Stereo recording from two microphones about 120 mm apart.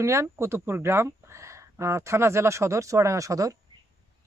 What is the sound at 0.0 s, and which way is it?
Speech, 25° right (ahead or behind).